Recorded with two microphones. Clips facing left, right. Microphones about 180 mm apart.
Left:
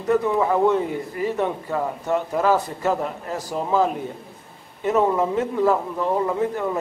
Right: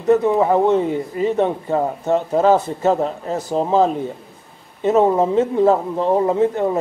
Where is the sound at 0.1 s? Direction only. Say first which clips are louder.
Right 5 dB; 25° right (ahead or behind).